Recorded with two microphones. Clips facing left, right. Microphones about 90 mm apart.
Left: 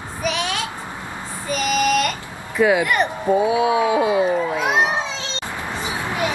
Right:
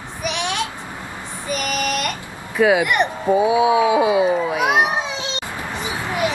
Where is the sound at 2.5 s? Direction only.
15° right (ahead or behind).